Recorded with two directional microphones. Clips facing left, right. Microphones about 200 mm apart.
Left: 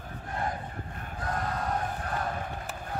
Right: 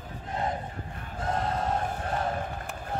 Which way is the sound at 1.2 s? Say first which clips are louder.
Right 3 dB; 25° right (ahead or behind).